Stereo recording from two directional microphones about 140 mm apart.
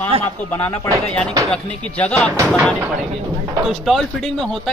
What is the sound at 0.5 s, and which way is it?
A man's voice, 20° left (ahead or behind).